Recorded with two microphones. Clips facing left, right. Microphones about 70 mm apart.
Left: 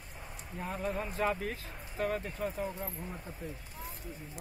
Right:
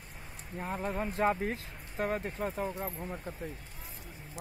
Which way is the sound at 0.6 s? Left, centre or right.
Right.